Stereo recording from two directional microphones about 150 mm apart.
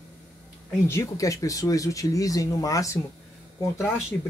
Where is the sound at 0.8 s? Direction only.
20° left (ahead or behind).